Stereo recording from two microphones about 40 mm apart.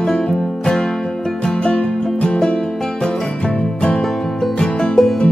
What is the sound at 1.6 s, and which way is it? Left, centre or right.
Music, left.